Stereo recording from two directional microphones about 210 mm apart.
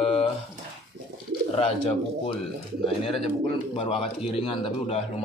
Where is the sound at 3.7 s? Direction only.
25° left (ahead or behind).